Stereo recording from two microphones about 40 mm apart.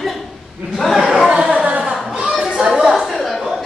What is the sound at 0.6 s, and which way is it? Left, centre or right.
Chatter, centre.